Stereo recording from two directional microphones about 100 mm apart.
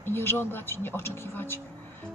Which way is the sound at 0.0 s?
25° left (ahead or behind).